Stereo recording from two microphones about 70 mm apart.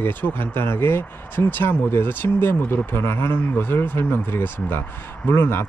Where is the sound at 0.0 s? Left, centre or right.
Left.